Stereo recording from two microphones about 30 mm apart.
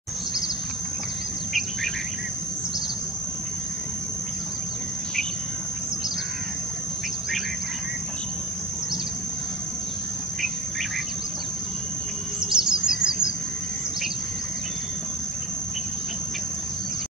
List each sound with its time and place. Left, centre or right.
12.4 s bird: right